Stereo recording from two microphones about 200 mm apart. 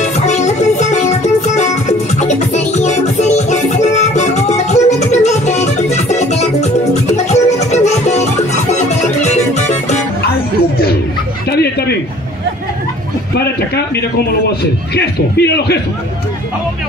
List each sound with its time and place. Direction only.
0.0 s music: 35° left (ahead or behind)
11.5 s a sound: 55° left (ahead or behind)
14.6 s a man's voice: 55° left (ahead or behind)